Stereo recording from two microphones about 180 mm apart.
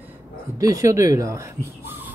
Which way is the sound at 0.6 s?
20° right (ahead or behind).